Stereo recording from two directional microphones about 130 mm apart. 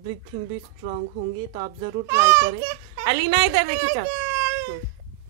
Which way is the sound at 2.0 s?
20° right (ahead or behind).